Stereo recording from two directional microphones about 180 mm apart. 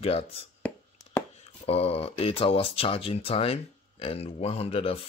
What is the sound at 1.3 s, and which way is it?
Speech, 35° left (ahead or behind).